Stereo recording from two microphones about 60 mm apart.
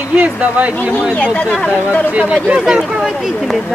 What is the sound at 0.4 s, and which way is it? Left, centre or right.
Speech, right.